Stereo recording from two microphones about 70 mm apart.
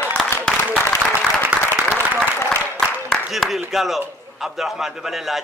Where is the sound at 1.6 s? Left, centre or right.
Left.